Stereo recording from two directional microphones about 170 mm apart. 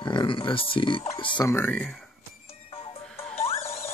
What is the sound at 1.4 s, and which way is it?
Speech, 10° left (ahead or behind).